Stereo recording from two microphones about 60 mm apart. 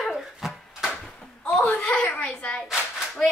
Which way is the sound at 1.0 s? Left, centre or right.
Centre.